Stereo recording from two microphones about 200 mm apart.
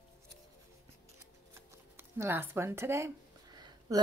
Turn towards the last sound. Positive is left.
turn(degrees=-20)  # may be behind; listen again after turning